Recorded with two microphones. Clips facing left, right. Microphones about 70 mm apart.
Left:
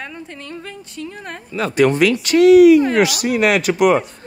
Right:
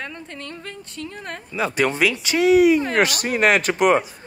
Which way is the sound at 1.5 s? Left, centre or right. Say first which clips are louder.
Left 6 dB; centre.